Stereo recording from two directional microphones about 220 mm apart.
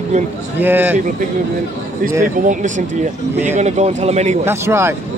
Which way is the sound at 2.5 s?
35° right (ahead or behind).